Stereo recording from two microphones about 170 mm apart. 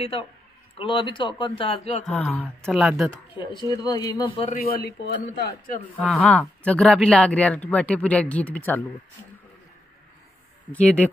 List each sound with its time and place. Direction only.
0.1 s speech: 35° left (ahead or behind)
2.0 s speech: 5° left (ahead or behind)
3.3 s speech: 25° left (ahead or behind)
4.5 s a man's voice: 60° left (ahead or behind)
5.9 s speech: 5° left (ahead or behind)
10.7 s speech: 10° left (ahead or behind)